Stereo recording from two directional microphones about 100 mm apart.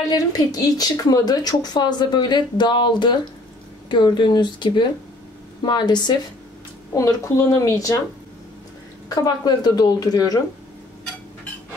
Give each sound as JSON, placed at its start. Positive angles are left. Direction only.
{"t": 0.1, "sound": "speech", "side_deg": 40}
{"t": 6.9, "sound": "a woman's voice", "side_deg": 30}
{"t": 9.1, "sound": "a woman's voice", "side_deg": 35}